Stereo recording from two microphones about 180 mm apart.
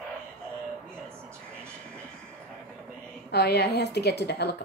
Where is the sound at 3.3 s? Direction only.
65° left (ahead or behind).